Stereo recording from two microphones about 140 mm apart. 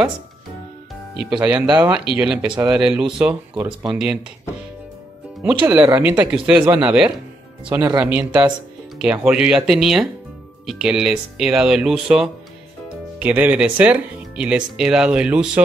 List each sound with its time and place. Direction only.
1.3 s speech: 5° right (ahead or behind)
5.4 s speech: 10° right (ahead or behind)
7.7 s speech: 20° right (ahead or behind)
8.1 s speech: 10° right (ahead or behind)